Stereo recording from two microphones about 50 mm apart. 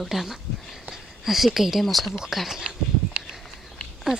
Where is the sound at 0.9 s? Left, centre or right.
Centre.